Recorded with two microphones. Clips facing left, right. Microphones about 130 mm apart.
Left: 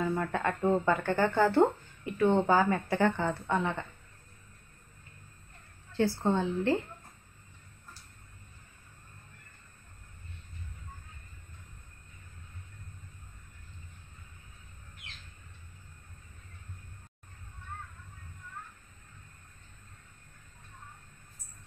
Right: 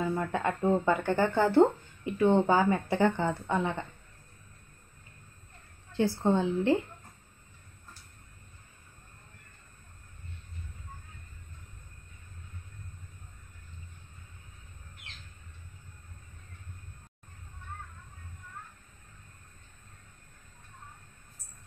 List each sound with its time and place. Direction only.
0.0 s speech: 15° right (ahead or behind)
5.9 s a woman's voice: 15° right (ahead or behind)